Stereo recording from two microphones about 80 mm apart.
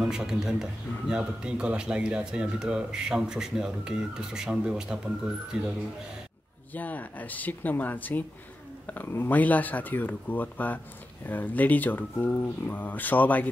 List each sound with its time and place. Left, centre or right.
0.0 s a man's voice: centre
6.7 s speech: left